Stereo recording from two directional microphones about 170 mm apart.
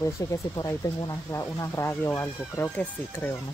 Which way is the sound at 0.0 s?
20° left (ahead or behind).